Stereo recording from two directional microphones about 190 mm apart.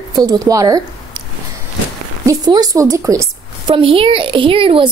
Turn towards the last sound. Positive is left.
turn(degrees=-30)  # may be behind; listen again after turning